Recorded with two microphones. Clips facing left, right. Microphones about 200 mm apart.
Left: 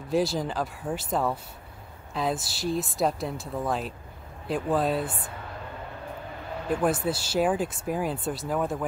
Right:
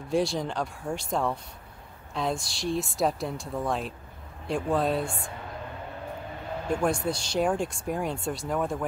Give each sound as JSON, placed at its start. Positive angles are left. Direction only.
{"t": 0.1, "sound": "speech", "side_deg": 0}
{"t": 6.7, "sound": "speech", "side_deg": 5}